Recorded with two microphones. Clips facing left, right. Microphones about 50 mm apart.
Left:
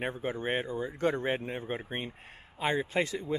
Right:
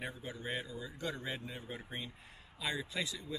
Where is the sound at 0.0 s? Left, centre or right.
Left.